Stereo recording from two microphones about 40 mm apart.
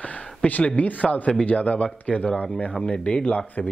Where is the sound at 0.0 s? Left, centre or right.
Left.